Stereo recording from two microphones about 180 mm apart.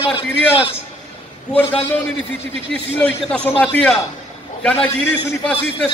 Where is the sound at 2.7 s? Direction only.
5° left (ahead or behind).